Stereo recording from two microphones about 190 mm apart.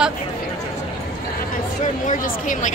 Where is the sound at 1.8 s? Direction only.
40° left (ahead or behind).